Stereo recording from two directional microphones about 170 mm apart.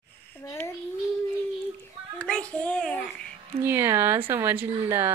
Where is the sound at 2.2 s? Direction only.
5° left (ahead or behind).